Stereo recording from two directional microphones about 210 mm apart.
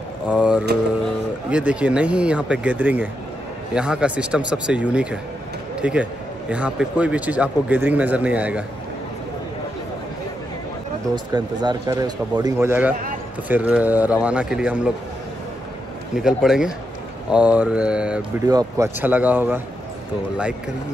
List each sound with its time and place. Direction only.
0.3 s mantra: 5° right (ahead or behind)
1.5 s a man's voice: 5° right (ahead or behind)
11.3 s a man's voice: 20° right (ahead or behind)
16.2 s speech: centre (ahead or behind)
18.5 s a man's voice: 15° right (ahead or behind)